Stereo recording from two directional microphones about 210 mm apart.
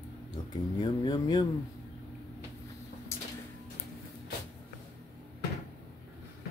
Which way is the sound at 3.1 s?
15° left (ahead or behind).